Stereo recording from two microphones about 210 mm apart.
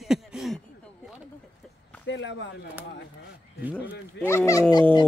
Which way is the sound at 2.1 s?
60° left (ahead or behind).